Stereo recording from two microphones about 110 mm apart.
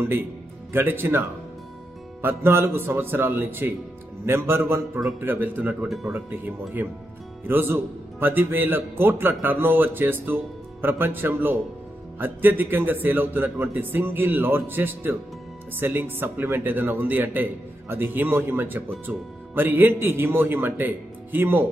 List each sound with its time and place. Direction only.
0.7 s speech: 20° right (ahead or behind)
2.2 s speech: 20° right (ahead or behind)